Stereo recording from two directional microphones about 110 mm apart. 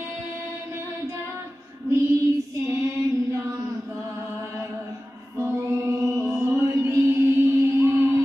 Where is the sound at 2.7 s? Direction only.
30° right (ahead or behind).